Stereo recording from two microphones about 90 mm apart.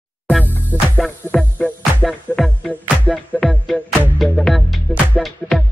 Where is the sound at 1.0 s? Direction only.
5° left (ahead or behind).